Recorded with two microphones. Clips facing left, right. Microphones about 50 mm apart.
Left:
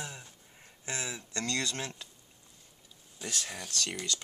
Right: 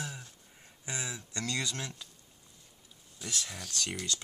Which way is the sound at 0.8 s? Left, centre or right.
Centre.